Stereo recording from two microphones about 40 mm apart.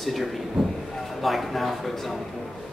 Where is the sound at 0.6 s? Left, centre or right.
Centre.